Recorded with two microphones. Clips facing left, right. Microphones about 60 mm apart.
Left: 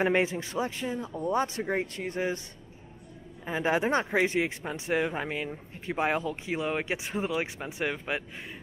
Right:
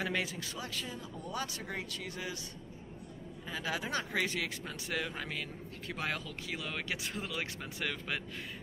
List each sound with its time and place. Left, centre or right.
0.0 s speech: left
3.4 s speech: left